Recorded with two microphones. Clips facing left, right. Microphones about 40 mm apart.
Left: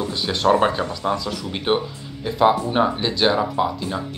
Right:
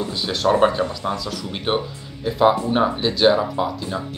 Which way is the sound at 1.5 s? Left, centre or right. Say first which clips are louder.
Left 2 dB; centre.